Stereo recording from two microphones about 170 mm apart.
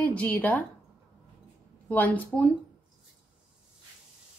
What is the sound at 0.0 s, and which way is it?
Speech, 10° left (ahead or behind).